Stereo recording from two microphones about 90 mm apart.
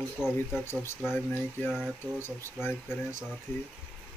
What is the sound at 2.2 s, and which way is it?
Speech, 25° left (ahead or behind).